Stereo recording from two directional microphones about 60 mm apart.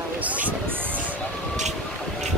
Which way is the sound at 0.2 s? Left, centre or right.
Right.